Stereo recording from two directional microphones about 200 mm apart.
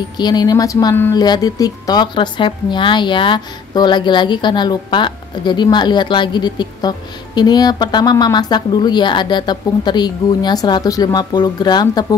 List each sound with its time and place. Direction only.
0.2 s speech: 20° left (ahead or behind)